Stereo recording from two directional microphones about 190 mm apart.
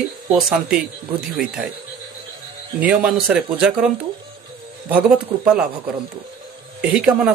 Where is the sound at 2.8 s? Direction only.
5° right (ahead or behind).